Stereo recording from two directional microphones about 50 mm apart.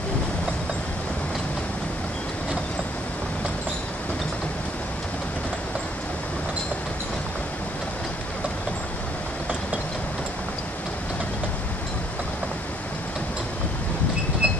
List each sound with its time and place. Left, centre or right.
14.4 s train: right